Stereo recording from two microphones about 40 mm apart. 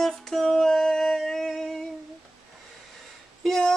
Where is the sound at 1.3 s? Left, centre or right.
Centre.